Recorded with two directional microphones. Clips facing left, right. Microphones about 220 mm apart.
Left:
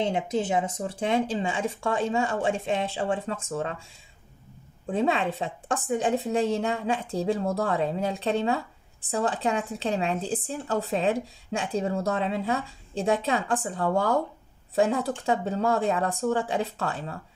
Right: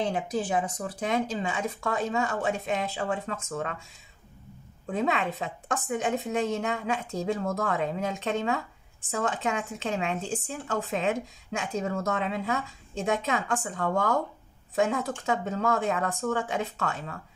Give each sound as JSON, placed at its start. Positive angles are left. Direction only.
{"t": 0.0, "sound": "speech", "side_deg": 25}
{"t": 4.8, "sound": "a woman's voice", "side_deg": 30}